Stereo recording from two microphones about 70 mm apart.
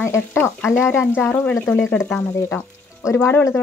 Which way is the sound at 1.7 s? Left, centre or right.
Left.